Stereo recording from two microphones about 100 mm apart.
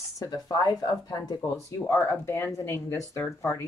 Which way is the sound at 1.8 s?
25° left (ahead or behind).